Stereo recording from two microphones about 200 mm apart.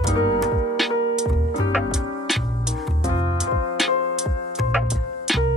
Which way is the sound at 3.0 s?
Centre (ahead or behind).